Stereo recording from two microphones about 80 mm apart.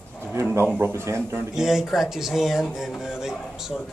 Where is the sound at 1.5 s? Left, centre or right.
Centre.